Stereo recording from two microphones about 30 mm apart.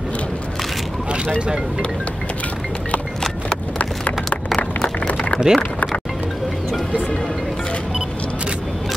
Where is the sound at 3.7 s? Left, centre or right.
Left.